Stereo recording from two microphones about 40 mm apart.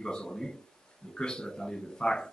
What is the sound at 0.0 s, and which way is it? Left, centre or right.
Speech, centre.